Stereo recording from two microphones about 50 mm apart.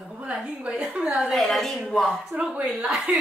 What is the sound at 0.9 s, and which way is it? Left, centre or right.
Speech, centre.